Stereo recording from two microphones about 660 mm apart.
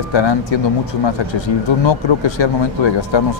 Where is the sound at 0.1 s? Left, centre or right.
Left.